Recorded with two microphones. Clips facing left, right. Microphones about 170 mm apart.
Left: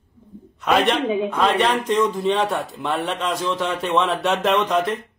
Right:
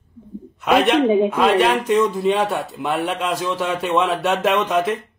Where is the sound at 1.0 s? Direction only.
30° right (ahead or behind).